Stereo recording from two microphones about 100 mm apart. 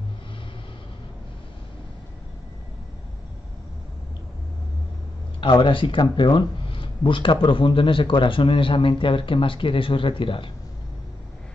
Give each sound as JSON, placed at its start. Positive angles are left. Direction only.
{"t": 5.4, "sound": "speech", "side_deg": 55}